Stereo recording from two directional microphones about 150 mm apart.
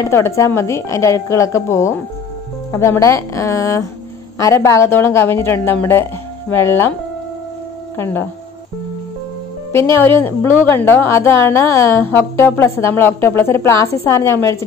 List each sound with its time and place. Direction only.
0.0 s a woman's voice: 20° left (ahead or behind)
8.0 s a woman's voice: 15° left (ahead or behind)
9.9 s a woman's voice: 15° left (ahead or behind)